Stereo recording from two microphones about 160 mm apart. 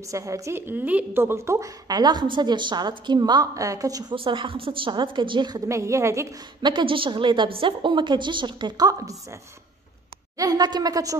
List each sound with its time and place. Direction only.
0.1 s a woman's voice: 20° right (ahead or behind)
5.7 s a woman's voice: 20° right (ahead or behind)
6.7 s a woman's voice: 30° right (ahead or behind)
10.3 s a woman's voice: 25° right (ahead or behind)